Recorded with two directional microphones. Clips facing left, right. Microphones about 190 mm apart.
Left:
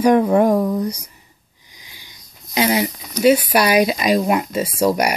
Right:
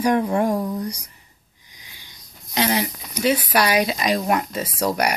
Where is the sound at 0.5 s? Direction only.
50° left (ahead or behind).